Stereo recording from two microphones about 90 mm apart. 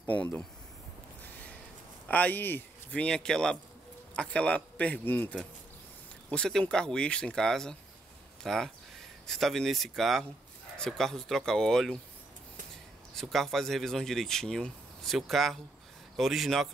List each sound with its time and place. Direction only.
0.0 s speech: 20° left (ahead or behind)
2.0 s speech: 15° left (ahead or behind)
13.1 s speech: centre (ahead or behind)